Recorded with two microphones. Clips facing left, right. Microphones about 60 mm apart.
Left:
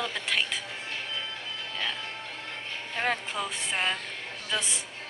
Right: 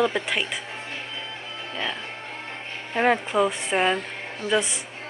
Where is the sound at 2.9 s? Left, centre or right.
Right.